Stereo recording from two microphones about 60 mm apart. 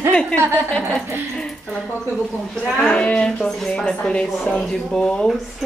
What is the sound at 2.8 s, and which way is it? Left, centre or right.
A woman's voice, centre.